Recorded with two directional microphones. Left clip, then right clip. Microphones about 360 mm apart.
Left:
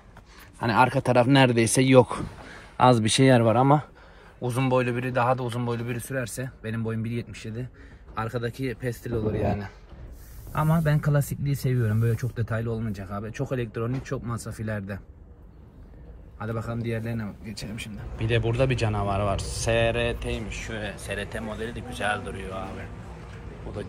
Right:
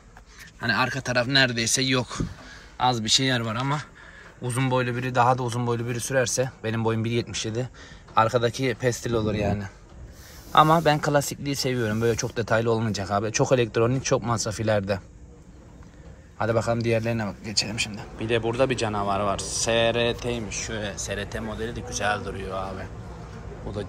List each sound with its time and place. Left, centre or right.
0.6 s speech: centre
8.5 s speech: right
8.7 s speech: centre
16.3 s speech: centre